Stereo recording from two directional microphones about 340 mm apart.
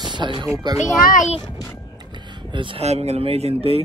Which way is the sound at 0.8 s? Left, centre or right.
Centre.